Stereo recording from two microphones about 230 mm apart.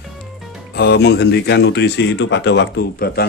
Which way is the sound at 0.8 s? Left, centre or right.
Left.